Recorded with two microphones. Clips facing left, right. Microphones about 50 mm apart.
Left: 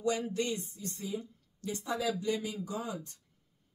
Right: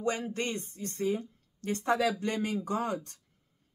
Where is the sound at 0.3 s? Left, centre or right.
Right.